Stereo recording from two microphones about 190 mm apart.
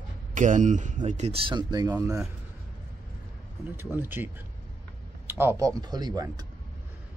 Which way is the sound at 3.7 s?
10° right (ahead or behind).